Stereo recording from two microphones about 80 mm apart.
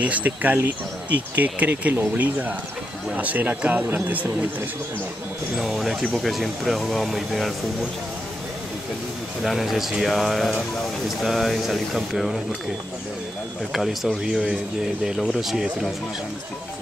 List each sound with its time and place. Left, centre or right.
0.0 s speech: centre
5.6 s speech: centre
9.4 s speech: centre
13.7 s speech: centre